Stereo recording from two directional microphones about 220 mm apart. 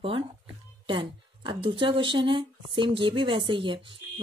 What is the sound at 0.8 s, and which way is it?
A woman's voice, 20° right (ahead or behind).